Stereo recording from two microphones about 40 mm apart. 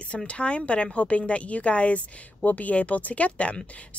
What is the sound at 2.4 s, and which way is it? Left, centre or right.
Speech, left.